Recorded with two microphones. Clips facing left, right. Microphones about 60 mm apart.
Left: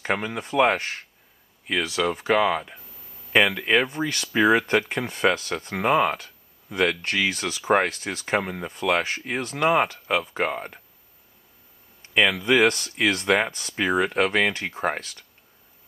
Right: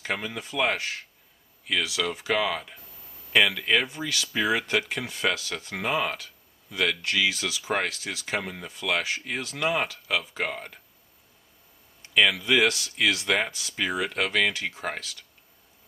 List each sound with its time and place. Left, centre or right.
0.0 s speech: left
3.8 s speech: left
12.1 s speech: left
13.7 s speech: left